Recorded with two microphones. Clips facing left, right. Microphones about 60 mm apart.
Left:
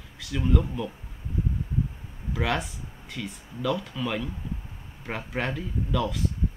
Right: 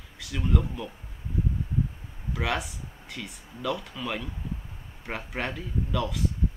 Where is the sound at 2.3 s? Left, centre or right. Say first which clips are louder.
Left 2 dB; centre.